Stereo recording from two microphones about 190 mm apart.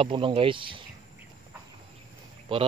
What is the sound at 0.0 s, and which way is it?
Speech, 25° right (ahead or behind).